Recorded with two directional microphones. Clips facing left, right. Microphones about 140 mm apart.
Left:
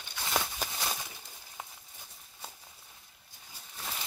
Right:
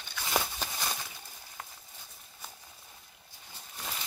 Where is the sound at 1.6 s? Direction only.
15° left (ahead or behind).